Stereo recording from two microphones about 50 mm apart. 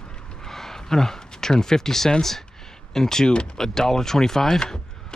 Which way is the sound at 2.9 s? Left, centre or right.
Centre.